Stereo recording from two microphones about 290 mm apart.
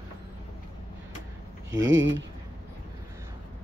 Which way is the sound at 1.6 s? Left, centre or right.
Right.